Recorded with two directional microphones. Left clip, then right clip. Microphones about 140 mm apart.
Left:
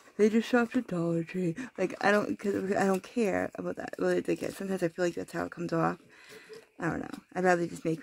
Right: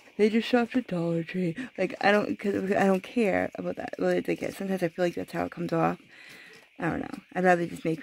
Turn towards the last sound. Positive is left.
turn(degrees=-20)  # may be behind; listen again after turning